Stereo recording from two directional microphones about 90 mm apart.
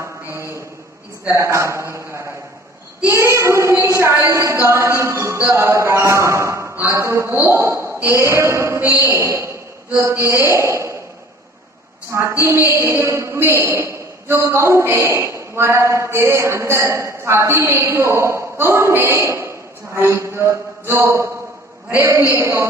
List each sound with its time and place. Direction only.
0.0 s a sound: 30° right (ahead or behind)
1.3 s a man's voice: 35° right (ahead or behind)
12.4 s a man's voice: 30° right (ahead or behind)
22.3 s a man's voice: 35° right (ahead or behind)